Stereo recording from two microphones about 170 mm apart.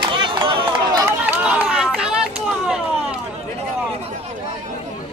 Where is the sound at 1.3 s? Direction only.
5° right (ahead or behind).